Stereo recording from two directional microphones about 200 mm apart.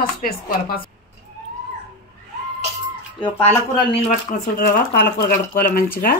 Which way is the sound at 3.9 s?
35° left (ahead or behind).